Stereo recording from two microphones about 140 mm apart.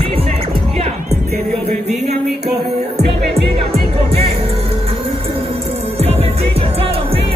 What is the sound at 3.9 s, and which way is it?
Music, 45° right (ahead or behind).